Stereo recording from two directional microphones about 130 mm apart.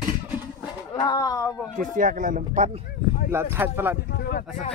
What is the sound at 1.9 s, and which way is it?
Speech, 90° right.